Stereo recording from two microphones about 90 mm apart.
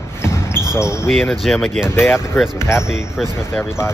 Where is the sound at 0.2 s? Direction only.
30° left (ahead or behind).